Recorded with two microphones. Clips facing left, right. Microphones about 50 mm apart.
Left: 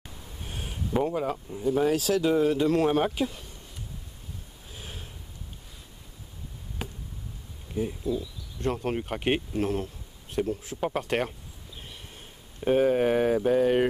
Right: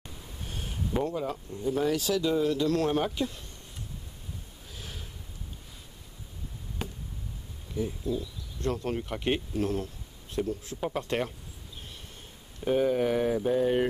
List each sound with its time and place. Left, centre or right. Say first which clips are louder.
0.5 s a sound: left 2 dB; centre
1.1 s speech: left 3 dB; left
1.5 s speech: left 3 dB; centre
4.6 s snort: left 1 dB; left
6.8 s chop: even; centre
8.0 s speech: left 2 dB; centre
8.5 s speech: left 2 dB; centre
9.5 s speech: left 2 dB; centre
12.6 s speech: left 3 dB; left